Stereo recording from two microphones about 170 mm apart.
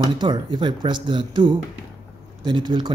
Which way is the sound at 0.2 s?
25° right (ahead or behind).